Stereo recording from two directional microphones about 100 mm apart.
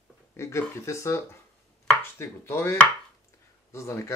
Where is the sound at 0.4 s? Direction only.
25° left (ahead or behind).